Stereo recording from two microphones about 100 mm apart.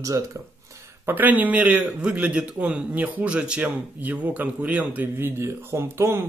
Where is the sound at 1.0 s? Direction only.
20° right (ahead or behind).